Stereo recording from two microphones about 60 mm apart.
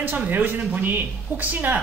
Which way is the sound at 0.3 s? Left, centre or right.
Right.